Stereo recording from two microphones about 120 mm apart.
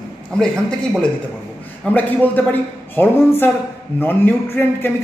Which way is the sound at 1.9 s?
15° left (ahead or behind).